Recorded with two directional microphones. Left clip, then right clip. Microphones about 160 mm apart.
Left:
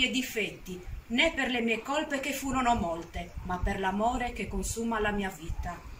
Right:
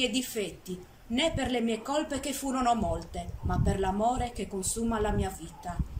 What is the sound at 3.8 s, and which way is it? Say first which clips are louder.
A man's voice: right 1 dB; 20° right (ahead or behind).